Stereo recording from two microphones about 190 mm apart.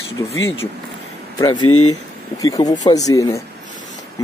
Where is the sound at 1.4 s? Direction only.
25° left (ahead or behind).